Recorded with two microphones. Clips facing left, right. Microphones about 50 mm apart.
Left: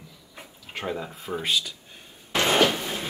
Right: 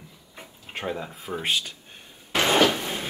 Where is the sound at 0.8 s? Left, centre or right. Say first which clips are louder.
Even; centre.